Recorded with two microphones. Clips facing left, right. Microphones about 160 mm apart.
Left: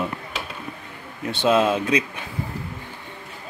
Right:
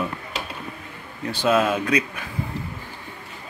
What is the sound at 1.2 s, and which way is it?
Speech, 25° left (ahead or behind).